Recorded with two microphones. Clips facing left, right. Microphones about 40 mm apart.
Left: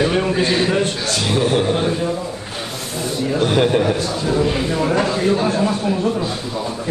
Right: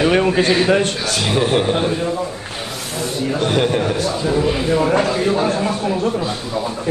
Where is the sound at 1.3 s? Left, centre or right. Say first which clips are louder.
Right 1 dB; right.